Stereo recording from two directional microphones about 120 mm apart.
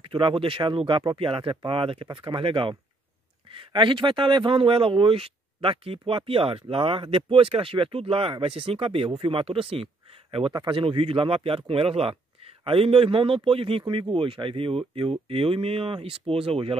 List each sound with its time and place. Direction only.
0.0 s speech: 45° right (ahead or behind)